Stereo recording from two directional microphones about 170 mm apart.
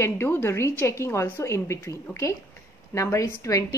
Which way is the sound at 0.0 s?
15° left (ahead or behind).